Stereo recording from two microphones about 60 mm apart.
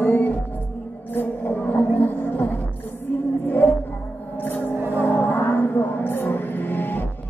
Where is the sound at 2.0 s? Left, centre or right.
Left.